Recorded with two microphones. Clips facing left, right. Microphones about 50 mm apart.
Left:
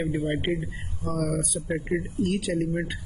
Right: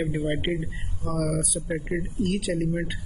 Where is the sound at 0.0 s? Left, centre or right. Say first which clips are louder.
Even; right.